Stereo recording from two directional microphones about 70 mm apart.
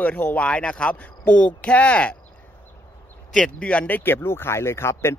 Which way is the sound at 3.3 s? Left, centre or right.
Centre.